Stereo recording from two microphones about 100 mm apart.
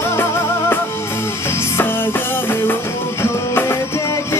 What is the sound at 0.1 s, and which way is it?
Music, 25° left (ahead or behind).